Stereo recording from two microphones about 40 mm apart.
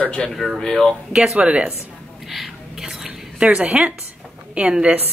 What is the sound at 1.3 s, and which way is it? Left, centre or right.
Speech, right.